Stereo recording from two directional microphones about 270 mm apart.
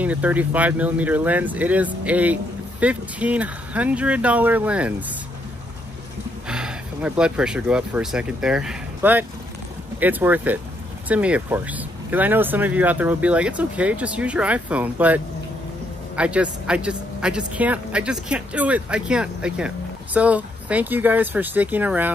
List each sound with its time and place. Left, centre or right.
0.0 s speech: centre
6.4 s speech: centre